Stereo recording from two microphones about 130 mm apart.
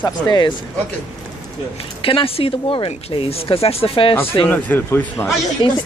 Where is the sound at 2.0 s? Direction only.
45° left (ahead or behind).